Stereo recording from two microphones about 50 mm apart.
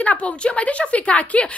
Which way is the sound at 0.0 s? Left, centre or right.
Left.